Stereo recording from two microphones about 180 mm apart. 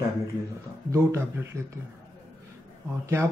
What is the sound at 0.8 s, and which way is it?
Speech, 15° right (ahead or behind).